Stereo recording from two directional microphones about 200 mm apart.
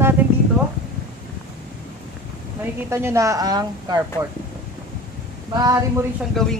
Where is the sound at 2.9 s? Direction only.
15° right (ahead or behind).